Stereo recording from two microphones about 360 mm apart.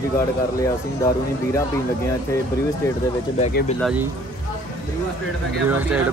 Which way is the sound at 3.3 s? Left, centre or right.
Centre.